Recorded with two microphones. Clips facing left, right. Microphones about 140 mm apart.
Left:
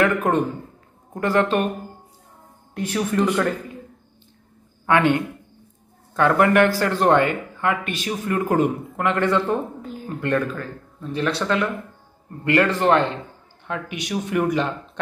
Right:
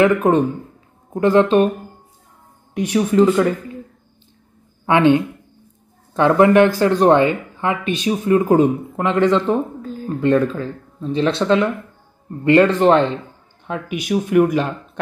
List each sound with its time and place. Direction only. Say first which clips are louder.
0.0 s speech: right 5 dB; 20° right (ahead or behind)
2.7 s speech: right 6 dB; 15° right (ahead or behind)
4.8 s a man's voice: right 5 dB; 20° right (ahead or behind)
13.7 s speech: right 6 dB; 10° right (ahead or behind)